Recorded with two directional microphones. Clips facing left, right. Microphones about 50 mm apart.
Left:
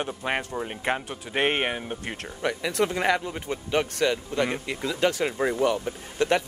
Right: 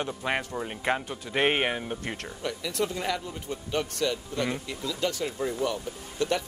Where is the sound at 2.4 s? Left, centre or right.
Left.